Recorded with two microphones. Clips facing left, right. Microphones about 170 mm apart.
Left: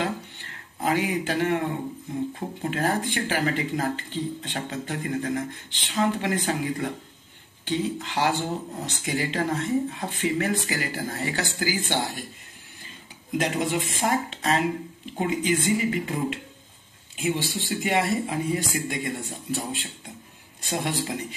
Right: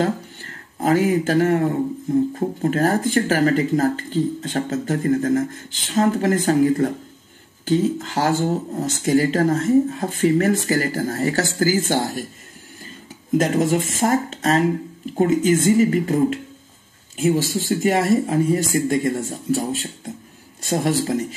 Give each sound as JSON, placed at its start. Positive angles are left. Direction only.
{"t": 0.0, "sound": "speech", "side_deg": -45}
{"t": 13.4, "sound": "speech", "side_deg": -45}